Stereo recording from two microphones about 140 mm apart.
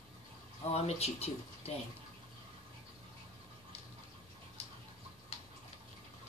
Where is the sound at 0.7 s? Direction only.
50° left (ahead or behind).